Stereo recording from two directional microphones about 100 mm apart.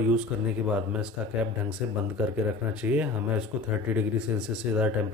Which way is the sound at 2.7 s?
15° right (ahead or behind).